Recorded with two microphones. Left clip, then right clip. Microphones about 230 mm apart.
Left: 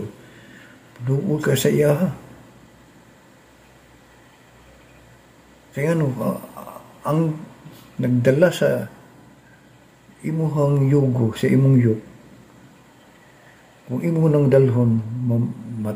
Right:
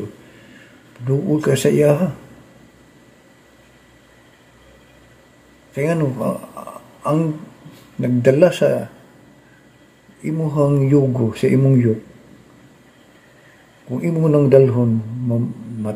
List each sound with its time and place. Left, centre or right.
1.0 s speech: centre
5.8 s speech: centre
10.2 s speech: centre
14.0 s speech: centre